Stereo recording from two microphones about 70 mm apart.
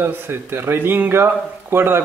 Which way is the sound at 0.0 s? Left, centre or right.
Right.